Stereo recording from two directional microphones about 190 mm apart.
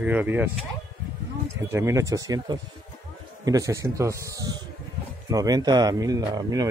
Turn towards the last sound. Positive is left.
turn(degrees=-20)  # may be behind; listen again after turning